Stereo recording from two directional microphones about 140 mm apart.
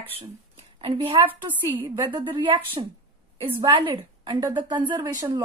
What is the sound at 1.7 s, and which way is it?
Speech, 15° right (ahead or behind).